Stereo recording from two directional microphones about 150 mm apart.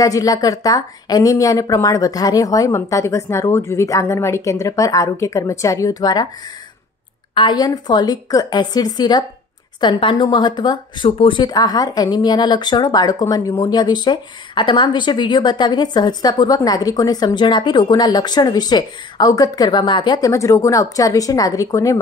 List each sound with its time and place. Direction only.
0.0 s speech: 25° left (ahead or behind)
7.3 s speech: 30° left (ahead or behind)